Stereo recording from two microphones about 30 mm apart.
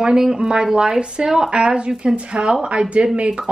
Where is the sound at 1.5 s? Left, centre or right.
Right.